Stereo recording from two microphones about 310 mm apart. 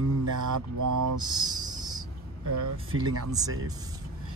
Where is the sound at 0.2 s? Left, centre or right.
Right.